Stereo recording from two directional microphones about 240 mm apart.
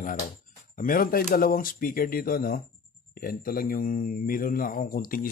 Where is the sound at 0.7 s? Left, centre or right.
Left.